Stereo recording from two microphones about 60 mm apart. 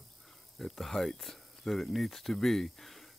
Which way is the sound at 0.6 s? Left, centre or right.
Centre.